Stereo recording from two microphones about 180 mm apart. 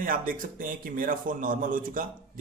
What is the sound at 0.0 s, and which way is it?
A man's voice, 50° right (ahead or behind).